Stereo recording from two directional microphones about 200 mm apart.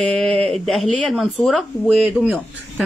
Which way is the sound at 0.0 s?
5° left (ahead or behind).